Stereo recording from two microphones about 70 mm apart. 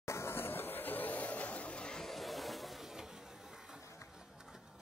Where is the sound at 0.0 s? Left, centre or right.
Left.